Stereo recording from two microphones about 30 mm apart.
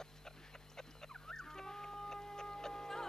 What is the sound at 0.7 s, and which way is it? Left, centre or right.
Music, centre.